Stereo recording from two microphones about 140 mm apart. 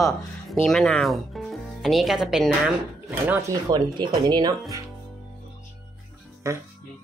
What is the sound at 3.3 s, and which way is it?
Speech, 20° right (ahead or behind).